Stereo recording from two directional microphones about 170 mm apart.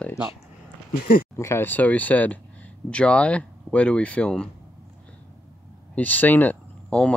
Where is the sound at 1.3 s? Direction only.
15° left (ahead or behind).